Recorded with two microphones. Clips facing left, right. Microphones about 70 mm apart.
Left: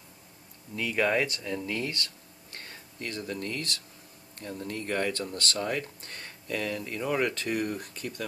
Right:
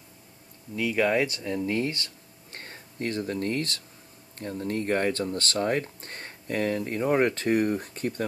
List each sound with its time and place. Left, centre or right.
0.7 s speech: centre
1.2 s speech: right